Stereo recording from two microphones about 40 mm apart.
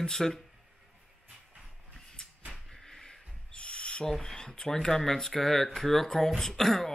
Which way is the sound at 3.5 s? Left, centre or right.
Left.